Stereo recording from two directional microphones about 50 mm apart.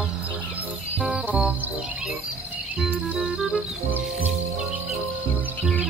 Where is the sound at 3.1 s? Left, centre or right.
Centre.